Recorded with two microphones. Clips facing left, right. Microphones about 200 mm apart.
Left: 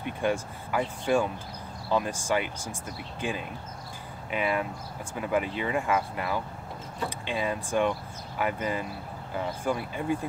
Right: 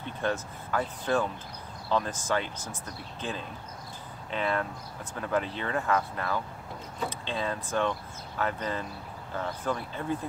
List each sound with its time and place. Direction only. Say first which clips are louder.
0.0 s speech: left 3 dB; 10° left (ahead or behind)